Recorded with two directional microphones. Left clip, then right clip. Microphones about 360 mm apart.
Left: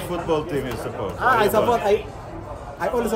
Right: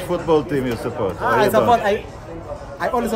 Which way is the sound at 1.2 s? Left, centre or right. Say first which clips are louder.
Right 2 dB; centre.